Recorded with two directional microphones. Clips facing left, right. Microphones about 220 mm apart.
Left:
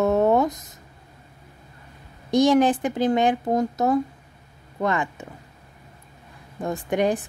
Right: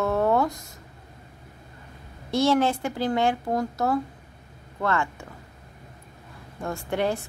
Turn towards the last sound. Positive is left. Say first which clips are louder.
# left 4 dB
turn(degrees=15)  # may be behind; listen again after turning